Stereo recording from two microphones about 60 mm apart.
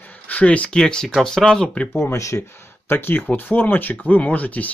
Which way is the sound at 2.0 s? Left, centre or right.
Left.